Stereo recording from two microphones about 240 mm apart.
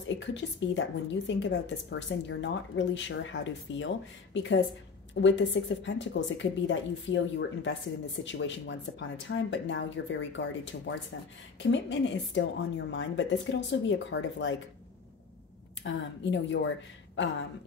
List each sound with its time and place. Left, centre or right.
0.2 s a woman's voice: left
15.8 s a woman's voice: left